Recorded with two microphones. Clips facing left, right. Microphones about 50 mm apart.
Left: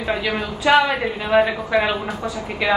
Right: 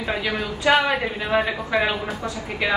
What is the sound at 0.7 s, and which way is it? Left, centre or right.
A woman's voice, centre.